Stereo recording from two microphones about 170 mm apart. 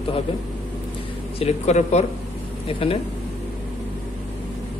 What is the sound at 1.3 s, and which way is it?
Speech, 40° left (ahead or behind).